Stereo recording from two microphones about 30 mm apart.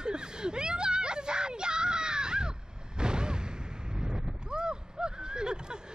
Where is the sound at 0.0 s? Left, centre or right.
Right.